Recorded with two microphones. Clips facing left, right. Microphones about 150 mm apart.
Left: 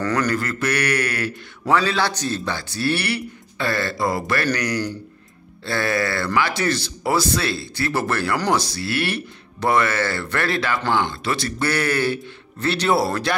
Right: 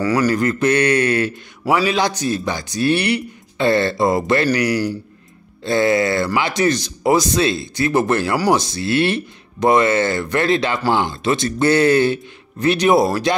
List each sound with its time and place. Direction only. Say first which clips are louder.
0.0 s a man's voice: right 5 dB; 10° right (ahead or behind)
0.3 s a man's voice: right 6 dB; 20° right (ahead or behind)
4.6 s a man's voice: right 5 dB; 10° right (ahead or behind)